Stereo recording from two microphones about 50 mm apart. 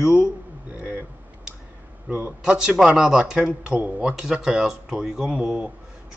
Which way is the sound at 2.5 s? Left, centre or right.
Centre.